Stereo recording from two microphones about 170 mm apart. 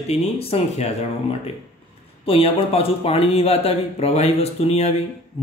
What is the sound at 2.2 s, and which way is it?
Speech, 35° left (ahead or behind).